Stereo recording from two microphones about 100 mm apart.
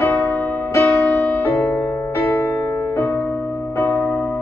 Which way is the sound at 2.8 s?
20° left (ahead or behind).